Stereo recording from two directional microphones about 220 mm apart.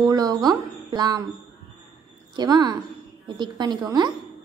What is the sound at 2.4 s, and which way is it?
A woman's voice, 20° right (ahead or behind).